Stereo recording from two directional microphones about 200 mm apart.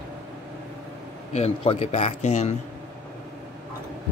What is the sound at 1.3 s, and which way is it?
A man's voice, 30° left (ahead or behind).